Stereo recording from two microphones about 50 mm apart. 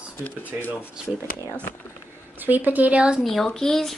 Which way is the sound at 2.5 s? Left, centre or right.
Right.